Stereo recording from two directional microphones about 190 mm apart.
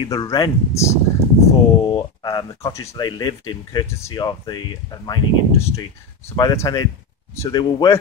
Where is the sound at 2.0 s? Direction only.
20° left (ahead or behind).